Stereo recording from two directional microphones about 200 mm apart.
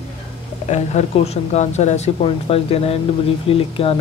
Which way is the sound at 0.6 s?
35° left (ahead or behind).